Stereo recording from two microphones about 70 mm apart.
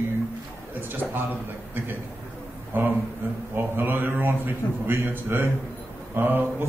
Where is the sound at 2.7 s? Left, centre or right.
Right.